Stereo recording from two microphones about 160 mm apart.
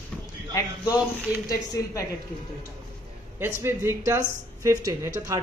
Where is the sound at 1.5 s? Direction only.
20° left (ahead or behind).